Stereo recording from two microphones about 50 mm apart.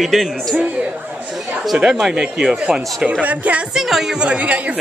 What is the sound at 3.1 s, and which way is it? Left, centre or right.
Speech, right.